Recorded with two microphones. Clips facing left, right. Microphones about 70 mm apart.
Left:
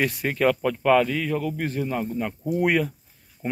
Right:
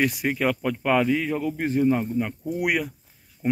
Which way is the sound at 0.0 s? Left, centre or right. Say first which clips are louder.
Left 1 dB; centre.